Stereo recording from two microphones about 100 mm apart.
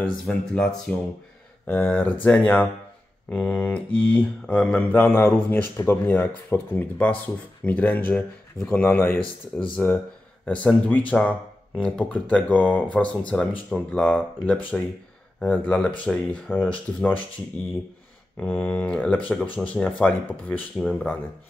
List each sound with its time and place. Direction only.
0.0 s mantra: 5° left (ahead or behind)
1.7 s speech: 20° left (ahead or behind)
2.2 s mantra: 15° left (ahead or behind)
8.5 s mantra: 5° left (ahead or behind)
8.8 s speech: 25° left (ahead or behind)
9.2 s speech: 60° left (ahead or behind)
10.4 s speech: 15° left (ahead or behind)
10.9 s mantra: 15° left (ahead or behind)
13.3 s speech: 20° left (ahead or behind)
13.7 s mantra: 15° left (ahead or behind)
20.8 s mantra: 10° left (ahead or behind)